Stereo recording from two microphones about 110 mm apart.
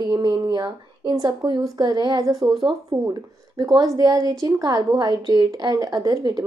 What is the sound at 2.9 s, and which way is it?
Speech, 35° right (ahead or behind).